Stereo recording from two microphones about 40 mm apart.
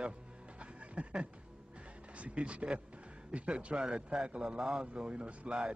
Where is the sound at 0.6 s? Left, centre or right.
Right.